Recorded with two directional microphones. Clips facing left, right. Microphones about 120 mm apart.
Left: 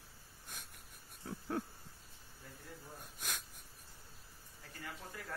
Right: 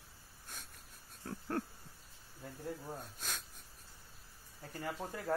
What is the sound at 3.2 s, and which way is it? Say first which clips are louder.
Speech: even; 10° left (ahead or behind).